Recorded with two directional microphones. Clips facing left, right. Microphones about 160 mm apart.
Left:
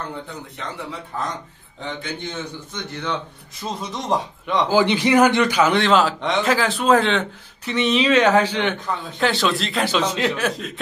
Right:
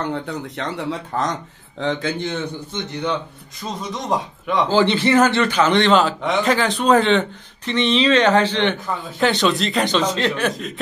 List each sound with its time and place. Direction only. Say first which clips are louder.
0.0 s a man's voice: right 7 dB; 90° right
2.7 s a man's voice: right 3 dB; 20° right (ahead or behind)
3.9 s speech: even; centre (ahead or behind)
4.6 s a man's voice: right 1 dB; 10° left (ahead or behind)